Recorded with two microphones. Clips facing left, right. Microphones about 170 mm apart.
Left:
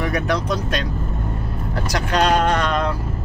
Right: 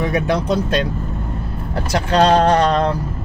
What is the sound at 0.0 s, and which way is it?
Speech, 25° right (ahead or behind).